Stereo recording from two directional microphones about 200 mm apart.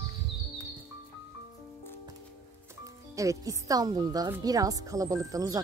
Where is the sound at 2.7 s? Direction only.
15° right (ahead or behind).